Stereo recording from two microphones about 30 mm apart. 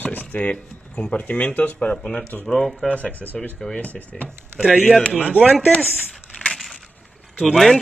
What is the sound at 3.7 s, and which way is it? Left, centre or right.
Speech, left.